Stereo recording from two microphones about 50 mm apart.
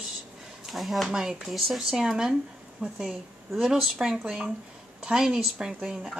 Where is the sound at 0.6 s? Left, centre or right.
Centre.